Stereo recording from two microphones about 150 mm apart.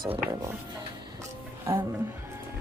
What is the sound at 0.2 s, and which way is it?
Speech, 20° right (ahead or behind).